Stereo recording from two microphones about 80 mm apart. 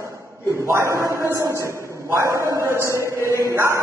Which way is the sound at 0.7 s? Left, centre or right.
Right.